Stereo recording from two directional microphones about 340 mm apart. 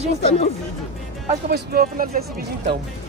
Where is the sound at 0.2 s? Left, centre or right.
Centre.